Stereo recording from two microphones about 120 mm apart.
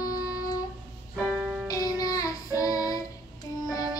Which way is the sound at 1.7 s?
30° left (ahead or behind).